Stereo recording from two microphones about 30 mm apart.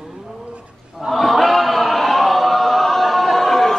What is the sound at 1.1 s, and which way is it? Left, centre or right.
Chant, centre.